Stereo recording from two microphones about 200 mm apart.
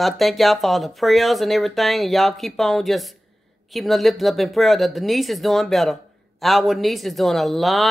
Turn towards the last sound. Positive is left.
turn(degrees=0)  # may be behind; listen again after turning